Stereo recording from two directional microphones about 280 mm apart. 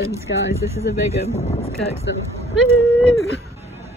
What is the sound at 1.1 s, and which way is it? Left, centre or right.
Speech, left.